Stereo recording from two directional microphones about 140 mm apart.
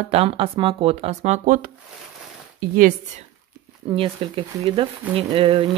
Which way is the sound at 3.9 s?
40° right (ahead or behind).